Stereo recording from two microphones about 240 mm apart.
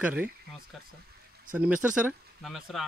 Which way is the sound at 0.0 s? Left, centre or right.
Centre.